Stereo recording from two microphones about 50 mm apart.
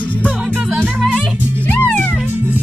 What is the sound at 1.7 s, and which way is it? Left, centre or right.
Music, left.